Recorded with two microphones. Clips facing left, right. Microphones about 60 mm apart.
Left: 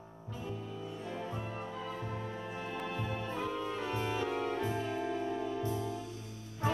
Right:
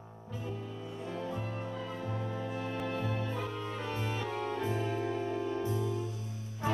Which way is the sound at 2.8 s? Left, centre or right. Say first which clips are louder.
Right 2 dB; centre.